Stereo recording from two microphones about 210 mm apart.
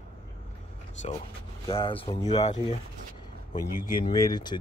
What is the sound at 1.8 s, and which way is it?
Speech, 25° left (ahead or behind).